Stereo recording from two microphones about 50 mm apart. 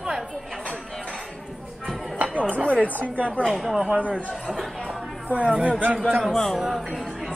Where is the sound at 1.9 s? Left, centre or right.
Centre.